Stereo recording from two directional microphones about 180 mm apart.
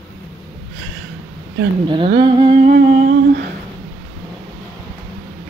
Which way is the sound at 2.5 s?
50° right (ahead or behind).